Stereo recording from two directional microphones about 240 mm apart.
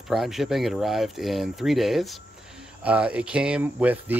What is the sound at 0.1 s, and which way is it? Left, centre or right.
Speech, centre.